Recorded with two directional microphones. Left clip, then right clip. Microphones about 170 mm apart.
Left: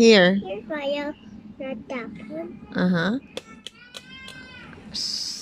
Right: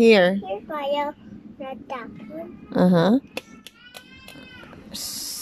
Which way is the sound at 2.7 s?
15° right (ahead or behind).